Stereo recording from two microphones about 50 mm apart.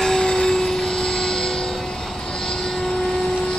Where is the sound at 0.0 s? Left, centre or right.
Centre.